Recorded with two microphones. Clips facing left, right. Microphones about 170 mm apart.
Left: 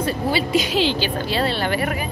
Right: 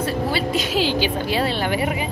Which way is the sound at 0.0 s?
Centre (ahead or behind).